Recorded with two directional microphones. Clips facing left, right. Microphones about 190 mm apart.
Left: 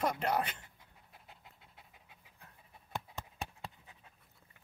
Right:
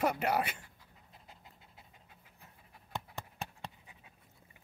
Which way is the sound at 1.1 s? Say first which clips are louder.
Right 1 dB; centre (ahead or behind).